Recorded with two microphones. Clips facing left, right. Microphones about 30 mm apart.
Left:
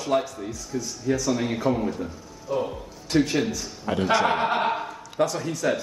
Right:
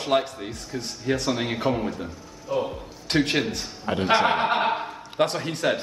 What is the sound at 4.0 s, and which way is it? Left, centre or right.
Speech, right.